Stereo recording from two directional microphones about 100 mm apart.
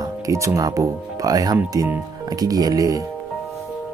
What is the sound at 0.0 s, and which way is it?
Speech, 30° right (ahead or behind).